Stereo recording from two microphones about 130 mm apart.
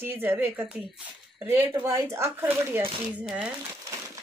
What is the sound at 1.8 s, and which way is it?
Speech, 20° right (ahead or behind).